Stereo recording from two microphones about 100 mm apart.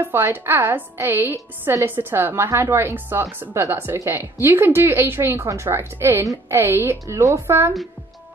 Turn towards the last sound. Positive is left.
turn(degrees=-25)  # may be behind; listen again after turning